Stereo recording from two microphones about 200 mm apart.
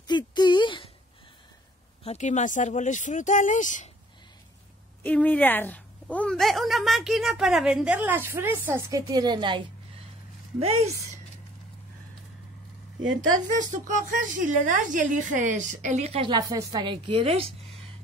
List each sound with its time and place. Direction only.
0.0 s a sound: 20° left (ahead or behind)
2.0 s speech: 35° left (ahead or behind)
5.0 s a woman's voice: 5° left (ahead or behind); by 9.6 s 20° right (ahead or behind)
13.5 s a woman's voice: 40° right (ahead or behind)